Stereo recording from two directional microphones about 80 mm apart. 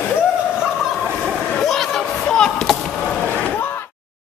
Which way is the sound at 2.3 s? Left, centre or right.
Centre.